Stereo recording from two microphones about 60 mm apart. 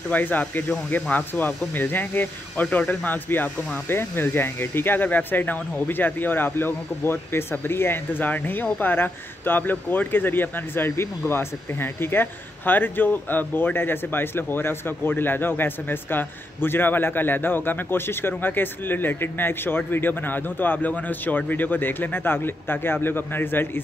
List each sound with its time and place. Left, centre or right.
0.1 s speech: left